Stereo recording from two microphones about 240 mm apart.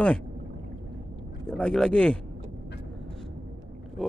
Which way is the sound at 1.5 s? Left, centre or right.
Centre.